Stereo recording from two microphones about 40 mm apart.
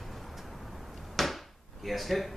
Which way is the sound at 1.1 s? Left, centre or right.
Centre.